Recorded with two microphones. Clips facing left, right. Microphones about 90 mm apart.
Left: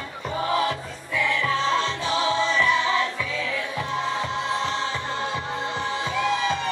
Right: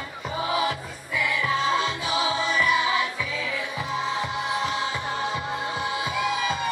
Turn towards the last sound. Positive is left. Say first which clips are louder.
# left 2 dB
turn(degrees=-10)  # may be behind; listen again after turning